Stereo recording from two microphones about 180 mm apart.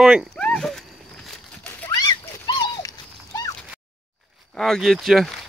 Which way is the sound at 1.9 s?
20° left (ahead or behind).